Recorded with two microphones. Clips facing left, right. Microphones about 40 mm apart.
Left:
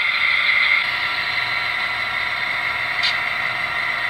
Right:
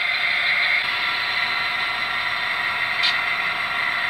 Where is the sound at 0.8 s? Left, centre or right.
Centre.